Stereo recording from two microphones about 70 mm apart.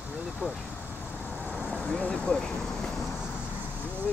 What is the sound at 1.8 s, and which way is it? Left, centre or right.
Vehicle, centre.